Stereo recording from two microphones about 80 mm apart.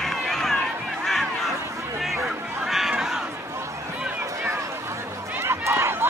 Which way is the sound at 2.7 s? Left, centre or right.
Centre.